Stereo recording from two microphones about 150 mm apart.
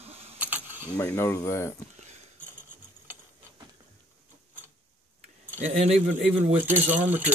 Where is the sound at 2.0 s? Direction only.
50° right (ahead or behind).